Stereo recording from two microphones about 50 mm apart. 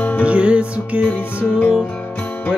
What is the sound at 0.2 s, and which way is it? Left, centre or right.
Music, right.